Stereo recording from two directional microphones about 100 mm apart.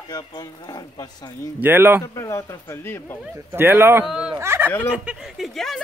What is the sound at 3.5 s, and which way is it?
Speech, 20° right (ahead or behind).